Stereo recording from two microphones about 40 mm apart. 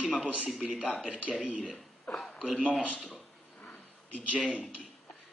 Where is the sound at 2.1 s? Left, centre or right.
Left.